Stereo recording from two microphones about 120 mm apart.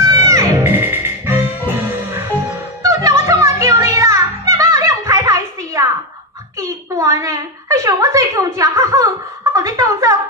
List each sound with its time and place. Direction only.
0.1 s music: 25° right (ahead or behind)
2.8 s music: 30° right (ahead or behind)
6.6 s a sound: 25° right (ahead or behind)